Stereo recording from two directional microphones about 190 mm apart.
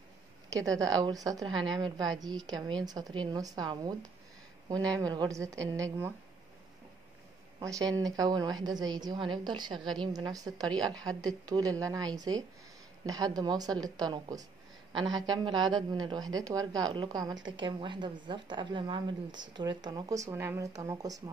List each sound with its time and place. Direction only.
0.5 s a woman's voice: 15° right (ahead or behind)
7.6 s a woman's voice: 20° right (ahead or behind)